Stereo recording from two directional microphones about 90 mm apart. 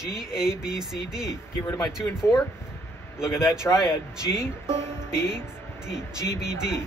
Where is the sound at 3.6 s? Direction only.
35° left (ahead or behind).